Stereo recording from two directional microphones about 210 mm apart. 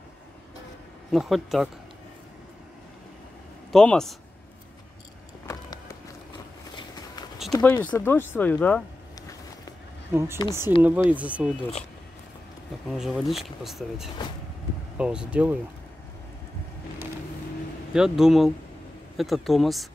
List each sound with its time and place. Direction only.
1.1 s speech: centre (ahead or behind)
3.7 s speech: 5° left (ahead or behind)
5.5 s a sound: 15° left (ahead or behind)
7.5 s speech: 10° left (ahead or behind)
10.1 s speech: 10° right (ahead or behind)
12.9 s speech: centre (ahead or behind)
17.9 s speech: centre (ahead or behind)